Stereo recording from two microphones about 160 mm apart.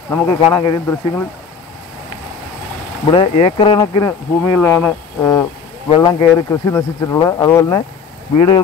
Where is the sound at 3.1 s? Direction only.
35° left (ahead or behind).